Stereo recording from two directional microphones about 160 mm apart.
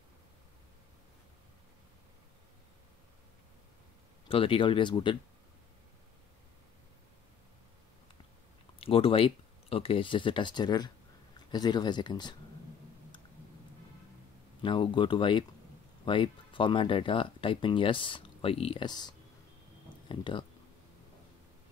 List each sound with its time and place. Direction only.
4.3 s speech: 35° left (ahead or behind)
8.7 s speech: 35° left (ahead or behind)
14.6 s speech: 30° left (ahead or behind)